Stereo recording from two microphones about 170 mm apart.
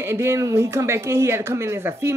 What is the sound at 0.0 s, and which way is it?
Speech, 15° right (ahead or behind).